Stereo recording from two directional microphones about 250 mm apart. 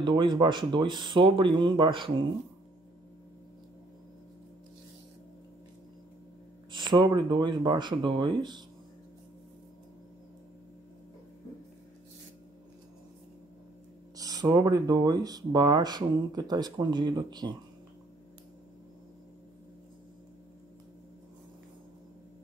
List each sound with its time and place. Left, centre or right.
0.0 s speech: centre
6.7 s speech: centre
14.1 s speech: centre